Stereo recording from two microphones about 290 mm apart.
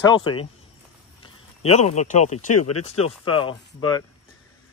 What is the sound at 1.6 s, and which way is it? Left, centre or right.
Speech, left.